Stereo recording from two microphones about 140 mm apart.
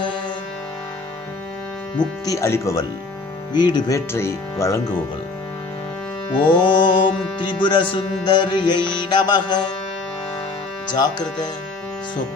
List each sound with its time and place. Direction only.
2.0 s speech: 25° left (ahead or behind)
3.5 s music: 30° left (ahead or behind)
4.1 s speech: 20° left (ahead or behind)
6.3 s music: 35° left (ahead or behind)
10.9 s music: 30° left (ahead or behind)